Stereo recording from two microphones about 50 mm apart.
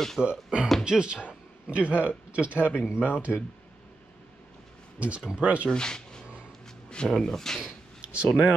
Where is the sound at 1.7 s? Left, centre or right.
Right.